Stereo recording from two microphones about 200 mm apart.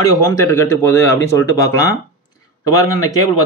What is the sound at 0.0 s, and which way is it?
Speech, 15° left (ahead or behind).